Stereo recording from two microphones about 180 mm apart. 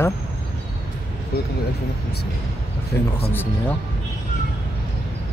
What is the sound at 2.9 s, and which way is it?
Speech, 15° left (ahead or behind).